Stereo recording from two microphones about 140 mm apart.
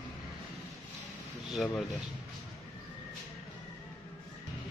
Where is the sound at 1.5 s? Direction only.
Centre (ahead or behind).